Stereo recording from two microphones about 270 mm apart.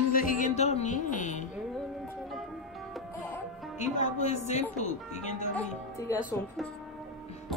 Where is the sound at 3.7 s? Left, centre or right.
Left.